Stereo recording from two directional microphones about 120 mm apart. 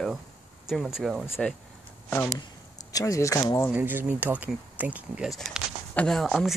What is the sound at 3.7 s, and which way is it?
Speech, 15° right (ahead or behind).